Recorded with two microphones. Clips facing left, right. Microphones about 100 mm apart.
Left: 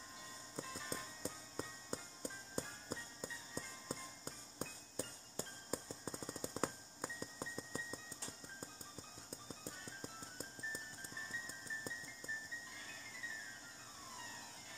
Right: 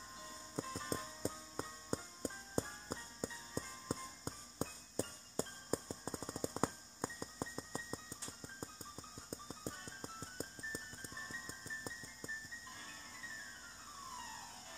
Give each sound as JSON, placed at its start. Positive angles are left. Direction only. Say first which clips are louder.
{"t": 0.6, "sound": "music", "louder": "right 5 dB", "side_deg": -35}
{"t": 9.7, "sound": "music", "louder": "right 4 dB", "side_deg": -35}